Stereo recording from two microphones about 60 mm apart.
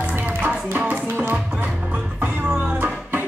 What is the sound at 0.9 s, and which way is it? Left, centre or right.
Music, right.